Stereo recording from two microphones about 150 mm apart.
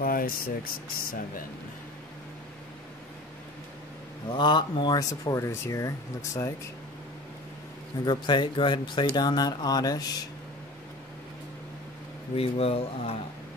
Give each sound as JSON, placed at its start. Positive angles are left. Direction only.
{"t": 0.0, "sound": "speech", "side_deg": 75}
{"t": 4.3, "sound": "speech", "side_deg": 30}
{"t": 8.0, "sound": "speech", "side_deg": 30}
{"t": 12.4, "sound": "speech", "side_deg": 40}